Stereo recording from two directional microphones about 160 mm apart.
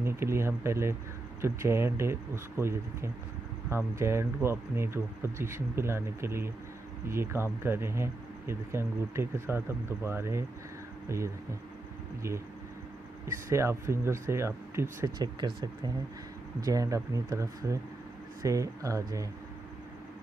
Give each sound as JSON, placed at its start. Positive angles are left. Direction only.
{"t": 0.0, "sound": "speech", "side_deg": -15}
{"t": 13.5, "sound": "speech", "side_deg": -15}